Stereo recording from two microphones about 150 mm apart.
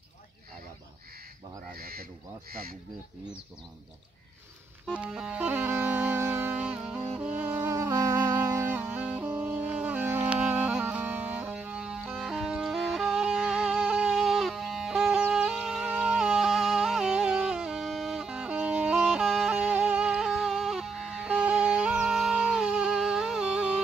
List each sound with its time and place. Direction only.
1.8 s crow: 85° right
4.9 s music: 5° right (ahead or behind)